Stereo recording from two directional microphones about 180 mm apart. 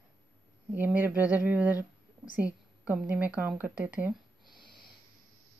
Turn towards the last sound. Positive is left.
turn(degrees=0)  # may be behind; listen again after turning